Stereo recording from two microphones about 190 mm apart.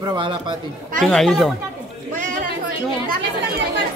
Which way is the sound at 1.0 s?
Centre (ahead or behind).